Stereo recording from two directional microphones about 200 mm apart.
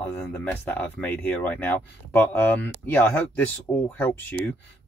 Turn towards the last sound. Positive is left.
turn(degrees=10)  # may be behind; listen again after turning